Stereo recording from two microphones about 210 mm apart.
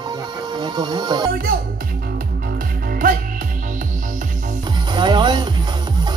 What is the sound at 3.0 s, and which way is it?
Music, 40° right (ahead or behind).